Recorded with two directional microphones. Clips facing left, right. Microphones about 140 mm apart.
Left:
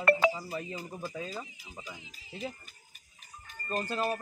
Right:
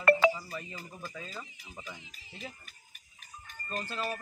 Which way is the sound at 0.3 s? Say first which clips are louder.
Even; 25° left (ahead or behind).